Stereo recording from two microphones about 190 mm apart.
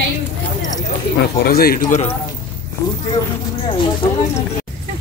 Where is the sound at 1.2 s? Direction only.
55° left (ahead or behind).